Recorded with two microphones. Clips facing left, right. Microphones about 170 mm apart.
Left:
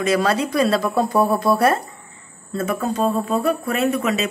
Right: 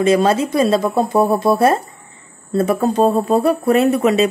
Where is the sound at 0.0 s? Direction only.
25° right (ahead or behind).